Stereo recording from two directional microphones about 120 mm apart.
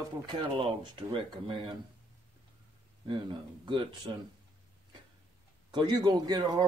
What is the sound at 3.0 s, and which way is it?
Speech, 40° right (ahead or behind).